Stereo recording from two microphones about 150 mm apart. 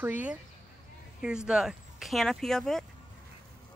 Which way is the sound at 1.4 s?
5° right (ahead or behind).